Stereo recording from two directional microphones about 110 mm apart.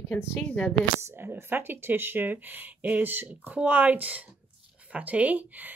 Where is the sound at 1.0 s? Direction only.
20° right (ahead or behind).